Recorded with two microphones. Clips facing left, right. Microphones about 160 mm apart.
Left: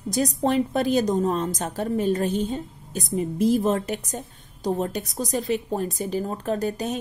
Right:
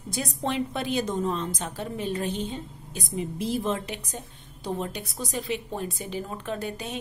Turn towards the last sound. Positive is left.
turn(degrees=40)  # may be behind; listen again after turning